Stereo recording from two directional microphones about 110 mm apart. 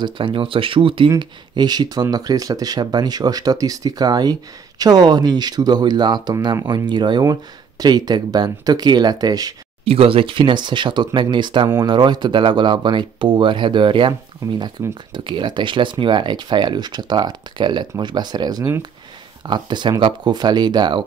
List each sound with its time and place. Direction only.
0.0 s speech: 50° right (ahead or behind)
9.8 s speech: 60° right (ahead or behind)
15.1 s speech: 45° right (ahead or behind)